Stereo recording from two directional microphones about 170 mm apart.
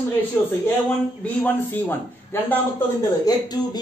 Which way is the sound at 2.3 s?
15° left (ahead or behind).